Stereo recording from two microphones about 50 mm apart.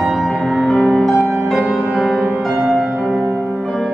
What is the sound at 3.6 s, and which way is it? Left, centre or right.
Music, centre.